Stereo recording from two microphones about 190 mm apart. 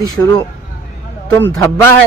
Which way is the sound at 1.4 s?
10° left (ahead or behind).